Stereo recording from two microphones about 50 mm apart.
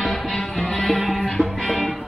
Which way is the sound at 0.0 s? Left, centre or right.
Centre.